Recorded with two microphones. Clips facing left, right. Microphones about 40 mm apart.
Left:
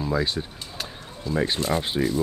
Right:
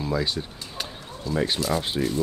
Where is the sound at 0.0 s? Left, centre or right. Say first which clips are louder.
Left 1 dB; centre.